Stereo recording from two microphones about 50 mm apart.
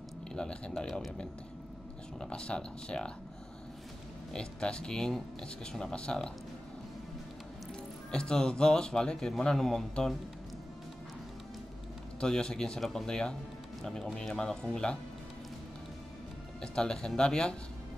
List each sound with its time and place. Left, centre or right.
0.3 s a sound: centre
2.1 s speech: centre
4.3 s speech: centre
8.1 s speech: centre
12.2 s speech: centre
16.6 s speech: centre